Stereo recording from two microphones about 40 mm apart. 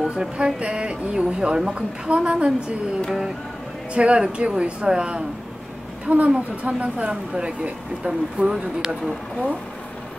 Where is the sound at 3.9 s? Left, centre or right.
Right.